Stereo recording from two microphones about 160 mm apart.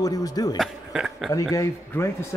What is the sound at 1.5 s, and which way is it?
Speech, 20° left (ahead or behind).